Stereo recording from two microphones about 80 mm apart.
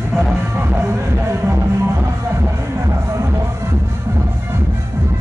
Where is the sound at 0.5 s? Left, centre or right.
Right.